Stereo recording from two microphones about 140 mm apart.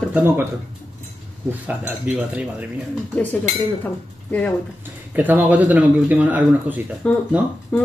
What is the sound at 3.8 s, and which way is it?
Speech, 10° left (ahead or behind).